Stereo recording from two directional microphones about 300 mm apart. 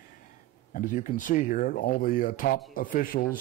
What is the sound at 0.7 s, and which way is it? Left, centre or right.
A man's voice, left.